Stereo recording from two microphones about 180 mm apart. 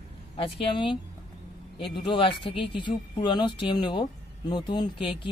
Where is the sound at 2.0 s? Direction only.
25° left (ahead or behind).